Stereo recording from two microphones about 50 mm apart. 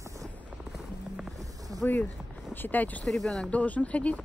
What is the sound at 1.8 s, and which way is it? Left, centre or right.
Speech, left.